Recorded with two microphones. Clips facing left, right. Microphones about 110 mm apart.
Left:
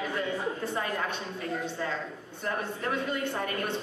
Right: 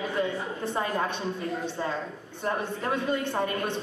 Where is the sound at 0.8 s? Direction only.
25° right (ahead or behind).